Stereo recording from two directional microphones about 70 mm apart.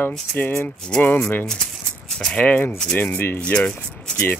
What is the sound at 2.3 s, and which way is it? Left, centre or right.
Speech, left.